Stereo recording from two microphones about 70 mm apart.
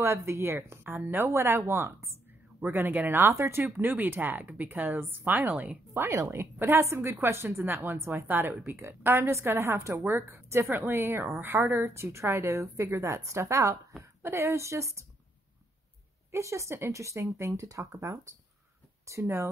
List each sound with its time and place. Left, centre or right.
0.0 s a woman's voice: right
2.6 s speech: right
5.9 s a woman's voice: right
16.3 s speech: right